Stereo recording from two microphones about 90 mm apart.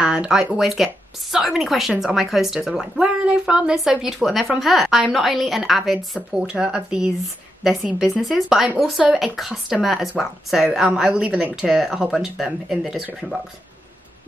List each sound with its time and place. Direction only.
0.0 s speech: 10° right (ahead or behind)